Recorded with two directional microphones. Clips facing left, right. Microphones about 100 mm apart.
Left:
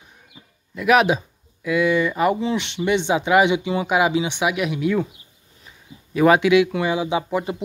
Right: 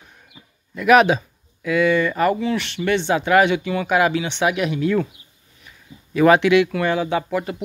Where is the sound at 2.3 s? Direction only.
25° left (ahead or behind).